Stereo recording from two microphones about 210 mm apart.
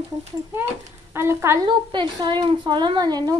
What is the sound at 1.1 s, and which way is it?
A woman's voice, 15° right (ahead or behind).